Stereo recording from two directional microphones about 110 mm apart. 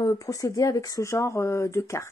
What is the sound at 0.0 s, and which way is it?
Speech, 30° left (ahead or behind).